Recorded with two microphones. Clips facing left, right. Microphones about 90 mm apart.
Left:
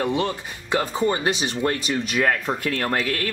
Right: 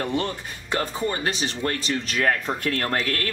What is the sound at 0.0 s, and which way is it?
Speech, 10° left (ahead or behind).